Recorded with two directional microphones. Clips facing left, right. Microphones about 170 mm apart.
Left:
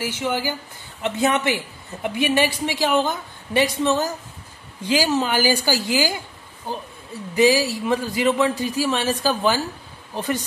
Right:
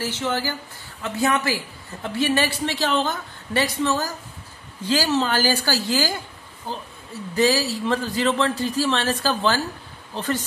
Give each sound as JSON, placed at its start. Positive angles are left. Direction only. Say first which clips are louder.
{"t": 0.0, "sound": "a woman's voice", "louder": "left 1 dB", "side_deg": 15}